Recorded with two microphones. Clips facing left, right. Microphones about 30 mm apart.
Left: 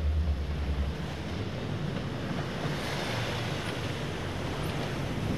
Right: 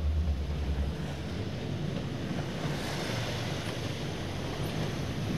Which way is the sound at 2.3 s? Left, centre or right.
Left.